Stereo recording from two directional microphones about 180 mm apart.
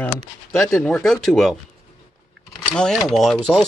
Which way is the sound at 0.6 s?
15° left (ahead or behind).